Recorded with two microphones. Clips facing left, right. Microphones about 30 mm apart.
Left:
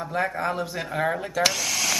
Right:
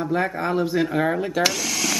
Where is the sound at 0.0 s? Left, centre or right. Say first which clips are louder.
Right 3 dB; centre.